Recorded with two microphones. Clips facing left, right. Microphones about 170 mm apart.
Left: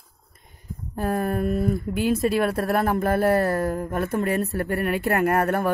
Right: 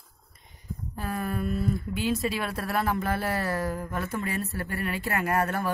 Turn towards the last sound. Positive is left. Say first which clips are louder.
# left 6 dB
turn(degrees=55)  # may be behind; listen again after turning